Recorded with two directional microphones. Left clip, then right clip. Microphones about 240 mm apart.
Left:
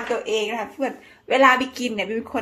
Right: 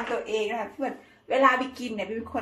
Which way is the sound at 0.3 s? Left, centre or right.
Left.